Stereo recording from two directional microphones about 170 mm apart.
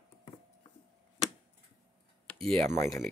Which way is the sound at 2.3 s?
5° left (ahead or behind).